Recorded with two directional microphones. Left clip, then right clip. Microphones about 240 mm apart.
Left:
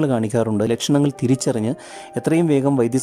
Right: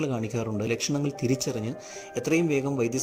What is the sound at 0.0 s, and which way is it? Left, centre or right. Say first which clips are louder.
Speech: left 10 dB; left.